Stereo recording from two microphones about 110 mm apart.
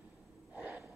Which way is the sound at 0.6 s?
15° right (ahead or behind).